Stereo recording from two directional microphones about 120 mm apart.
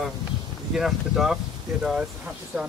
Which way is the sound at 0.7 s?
5° right (ahead or behind).